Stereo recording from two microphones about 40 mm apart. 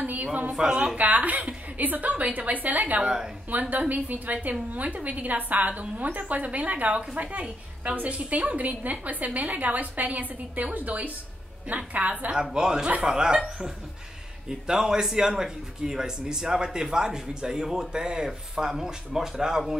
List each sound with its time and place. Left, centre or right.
0.0 s a sound: right
0.9 s a woman's voice: right
3.0 s speech: right
3.5 s a woman's voice: right
12.5 s a man's voice: centre